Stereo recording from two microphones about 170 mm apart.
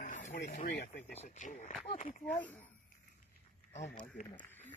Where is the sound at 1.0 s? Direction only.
45° left (ahead or behind).